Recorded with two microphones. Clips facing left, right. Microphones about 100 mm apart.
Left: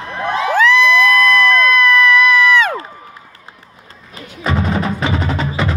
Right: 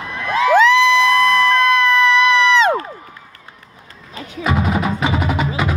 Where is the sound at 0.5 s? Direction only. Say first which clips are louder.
Even; 20° right (ahead or behind).